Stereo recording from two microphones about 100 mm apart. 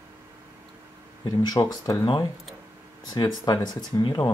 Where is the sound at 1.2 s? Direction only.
40° left (ahead or behind).